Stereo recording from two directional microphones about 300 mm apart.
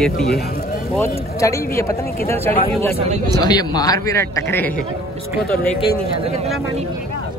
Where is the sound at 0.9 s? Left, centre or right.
Centre.